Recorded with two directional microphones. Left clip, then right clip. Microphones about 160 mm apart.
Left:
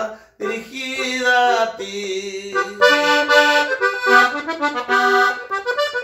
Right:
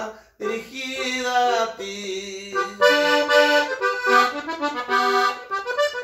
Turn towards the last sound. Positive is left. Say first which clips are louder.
# left 3 dB
turn(degrees=15)  # may be behind; listen again after turning